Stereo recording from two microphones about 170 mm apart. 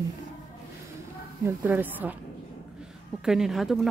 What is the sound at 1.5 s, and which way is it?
Speech, 10° right (ahead or behind).